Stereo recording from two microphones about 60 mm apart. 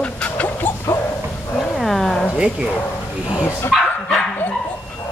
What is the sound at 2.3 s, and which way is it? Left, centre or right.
Speech, centre.